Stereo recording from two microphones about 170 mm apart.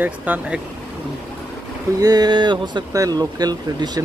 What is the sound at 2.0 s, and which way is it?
Speech, 25° right (ahead or behind).